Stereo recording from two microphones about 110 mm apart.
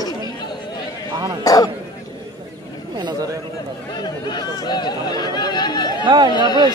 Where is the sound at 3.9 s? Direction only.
40° left (ahead or behind).